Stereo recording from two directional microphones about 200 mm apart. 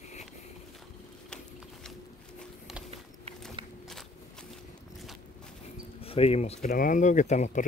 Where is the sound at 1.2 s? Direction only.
5° left (ahead or behind).